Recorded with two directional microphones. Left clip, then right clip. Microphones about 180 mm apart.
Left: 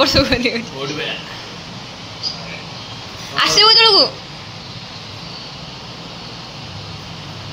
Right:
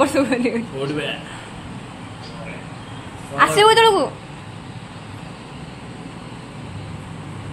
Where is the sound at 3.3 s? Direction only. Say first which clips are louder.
Left 1 dB; 15° right (ahead or behind).